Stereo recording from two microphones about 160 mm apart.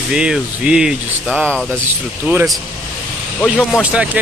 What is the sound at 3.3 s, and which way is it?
Speech, centre (ahead or behind).